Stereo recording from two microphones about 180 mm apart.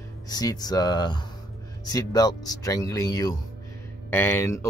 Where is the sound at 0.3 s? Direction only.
20° left (ahead or behind).